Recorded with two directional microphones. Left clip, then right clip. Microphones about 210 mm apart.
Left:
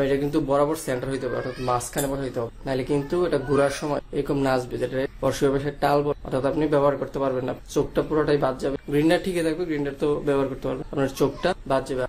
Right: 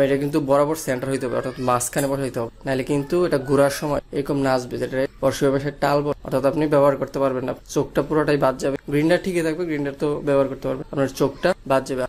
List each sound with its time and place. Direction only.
0.0 s speech: 30° right (ahead or behind)